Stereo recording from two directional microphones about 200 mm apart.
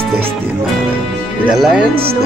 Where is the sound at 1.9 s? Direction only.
30° right (ahead or behind).